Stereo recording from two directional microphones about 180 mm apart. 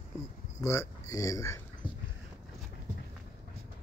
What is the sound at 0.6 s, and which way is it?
Speech, 15° left (ahead or behind).